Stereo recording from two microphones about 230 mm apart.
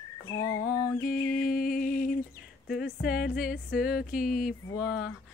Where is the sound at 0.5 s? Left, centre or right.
Left.